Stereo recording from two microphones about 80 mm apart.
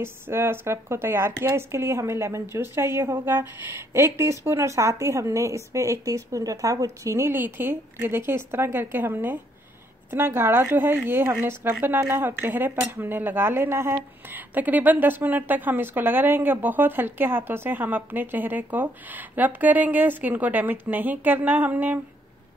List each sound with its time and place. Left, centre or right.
0.0 s a woman's voice: right